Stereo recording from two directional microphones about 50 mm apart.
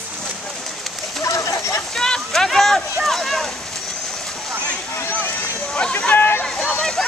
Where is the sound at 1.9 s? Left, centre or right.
Centre.